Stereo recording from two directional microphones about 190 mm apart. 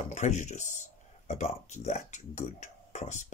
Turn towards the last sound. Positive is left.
turn(degrees=40)  # may be behind; listen again after turning